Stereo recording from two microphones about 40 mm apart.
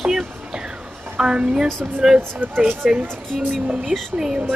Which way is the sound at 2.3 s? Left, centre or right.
Right.